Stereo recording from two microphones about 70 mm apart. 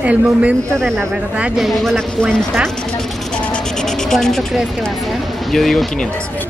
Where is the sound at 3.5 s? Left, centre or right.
Centre.